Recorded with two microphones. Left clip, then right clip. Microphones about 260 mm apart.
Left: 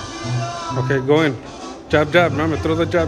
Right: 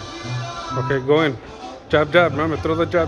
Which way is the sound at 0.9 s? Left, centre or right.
Centre.